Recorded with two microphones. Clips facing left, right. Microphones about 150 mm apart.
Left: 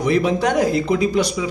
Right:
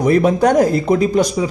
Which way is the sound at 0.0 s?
45° right (ahead or behind).